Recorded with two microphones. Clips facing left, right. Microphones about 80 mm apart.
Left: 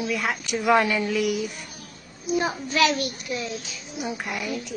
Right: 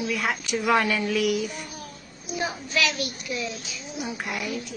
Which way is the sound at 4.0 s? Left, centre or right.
Centre.